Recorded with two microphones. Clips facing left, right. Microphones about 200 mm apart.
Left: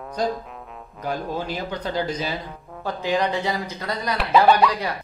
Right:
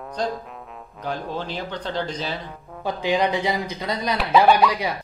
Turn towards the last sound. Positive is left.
turn(degrees=-5)  # may be behind; listen again after turning